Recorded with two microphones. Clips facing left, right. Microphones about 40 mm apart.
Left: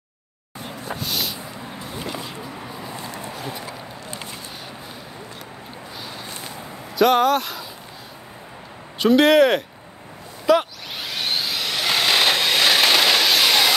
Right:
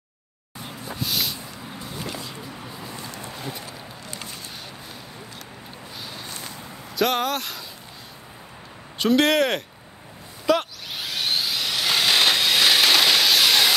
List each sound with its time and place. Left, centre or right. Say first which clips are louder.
1.0 s vehicle: right 1 dB; centre
2.0 s a sound: left 3 dB; centre
2.6 s vehicle: left 3 dB; centre
3.2 s clip-clop: left 3 dB; centre
6.0 s a sound: left 1 dB; centre
6.3 s walk: left 2 dB; left
7.0 s speech: left 7 dB; centre
8.9 s speech: left 5 dB; centre
10.4 s a sound: left 4 dB; centre